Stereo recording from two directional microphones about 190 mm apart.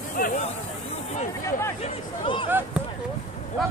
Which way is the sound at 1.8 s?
25° left (ahead or behind).